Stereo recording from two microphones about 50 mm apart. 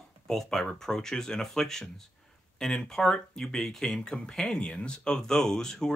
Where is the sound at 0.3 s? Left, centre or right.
Centre.